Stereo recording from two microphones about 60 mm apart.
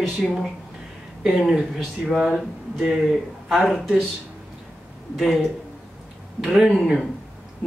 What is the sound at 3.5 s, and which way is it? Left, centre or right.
Speech, centre.